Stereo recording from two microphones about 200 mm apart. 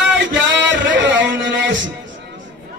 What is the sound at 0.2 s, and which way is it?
Music, 65° right (ahead or behind).